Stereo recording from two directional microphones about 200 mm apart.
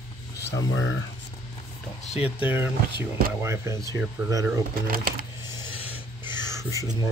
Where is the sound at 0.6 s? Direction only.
75° left (ahead or behind).